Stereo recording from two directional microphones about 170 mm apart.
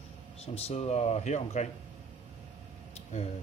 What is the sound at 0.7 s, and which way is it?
Speech, 40° left (ahead or behind).